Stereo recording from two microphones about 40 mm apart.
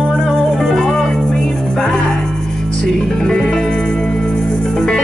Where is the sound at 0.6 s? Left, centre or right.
Centre.